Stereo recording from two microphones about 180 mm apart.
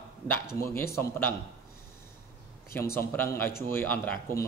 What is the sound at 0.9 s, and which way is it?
Speech, 15° left (ahead or behind).